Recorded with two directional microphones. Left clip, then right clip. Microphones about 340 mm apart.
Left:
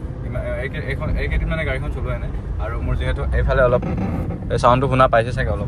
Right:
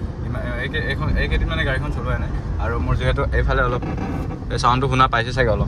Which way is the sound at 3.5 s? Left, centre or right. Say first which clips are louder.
Left 5 dB; centre.